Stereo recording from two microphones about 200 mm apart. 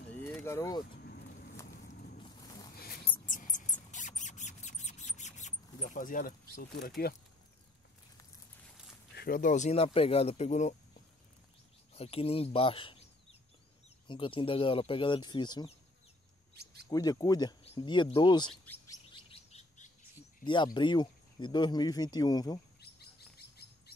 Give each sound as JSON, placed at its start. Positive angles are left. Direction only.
{"t": 0.2, "sound": "a sound", "side_deg": 10}
{"t": 1.0, "sound": "a sound", "side_deg": 50}
{"t": 2.2, "sound": "a sound", "side_deg": 20}
{"t": 2.7, "sound": "mouse", "side_deg": 50}
{"t": 6.5, "sound": "speech", "side_deg": 45}
{"t": 9.1, "sound": "speech", "side_deg": 50}
{"t": 11.9, "sound": "speech", "side_deg": 30}
{"t": 16.9, "sound": "speech", "side_deg": 20}
{"t": 18.9, "sound": "chirp", "side_deg": 25}
{"t": 20.4, "sound": "speech", "side_deg": 25}
{"t": 22.8, "sound": "chirp", "side_deg": 55}